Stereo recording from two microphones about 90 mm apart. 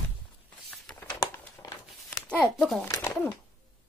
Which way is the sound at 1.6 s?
40° left (ahead or behind).